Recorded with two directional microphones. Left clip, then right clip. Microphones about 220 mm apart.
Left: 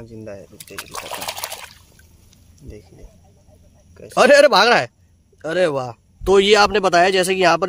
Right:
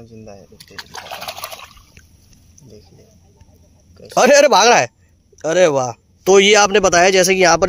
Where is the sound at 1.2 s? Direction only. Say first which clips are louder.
Even; 15° left (ahead or behind).